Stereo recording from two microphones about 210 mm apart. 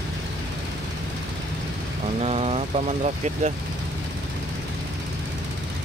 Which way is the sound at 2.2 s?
30° right (ahead or behind).